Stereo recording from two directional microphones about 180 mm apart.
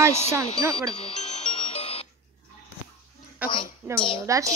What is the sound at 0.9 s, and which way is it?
Music, 35° left (ahead or behind).